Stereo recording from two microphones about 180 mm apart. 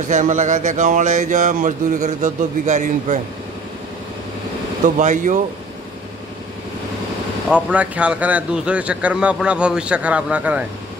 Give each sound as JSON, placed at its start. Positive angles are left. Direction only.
{"t": 0.1, "sound": "speech", "side_deg": -45}
{"t": 4.8, "sound": "speech", "side_deg": -45}
{"t": 7.4, "sound": "speech", "side_deg": -5}